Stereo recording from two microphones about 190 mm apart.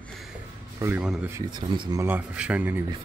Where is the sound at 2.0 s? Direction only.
10° right (ahead or behind).